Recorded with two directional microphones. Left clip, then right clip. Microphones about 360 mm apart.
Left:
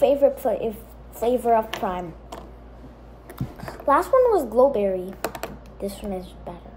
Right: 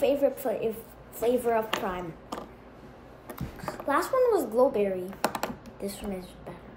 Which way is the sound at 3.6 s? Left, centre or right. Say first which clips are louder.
Left 7 dB; centre.